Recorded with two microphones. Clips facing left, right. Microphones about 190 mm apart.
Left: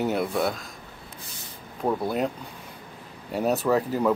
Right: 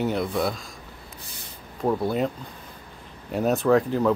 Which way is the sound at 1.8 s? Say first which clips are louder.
Right 2 dB; centre (ahead or behind).